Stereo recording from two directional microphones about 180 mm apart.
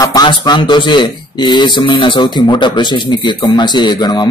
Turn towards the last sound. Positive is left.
turn(degrees=25)  # may be behind; listen again after turning